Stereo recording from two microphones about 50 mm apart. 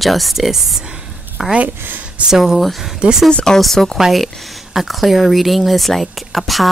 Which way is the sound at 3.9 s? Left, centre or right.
Centre.